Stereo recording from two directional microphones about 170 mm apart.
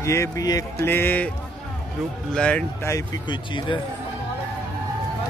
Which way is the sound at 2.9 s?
25° left (ahead or behind).